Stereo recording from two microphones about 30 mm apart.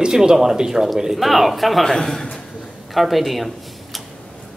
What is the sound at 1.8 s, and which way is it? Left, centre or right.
Speech, centre.